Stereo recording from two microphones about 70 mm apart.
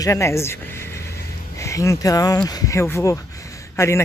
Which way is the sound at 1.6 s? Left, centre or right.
Left.